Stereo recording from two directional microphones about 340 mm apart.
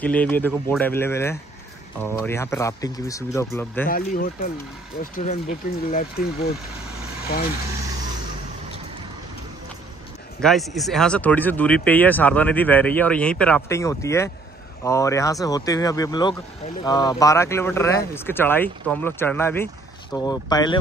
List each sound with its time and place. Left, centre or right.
0.0 s speech: centre
3.9 s speech: left
10.4 s speech: centre